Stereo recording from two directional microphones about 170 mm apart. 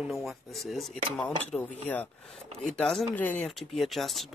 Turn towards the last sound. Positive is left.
turn(degrees=0)  # may be behind; listen again after turning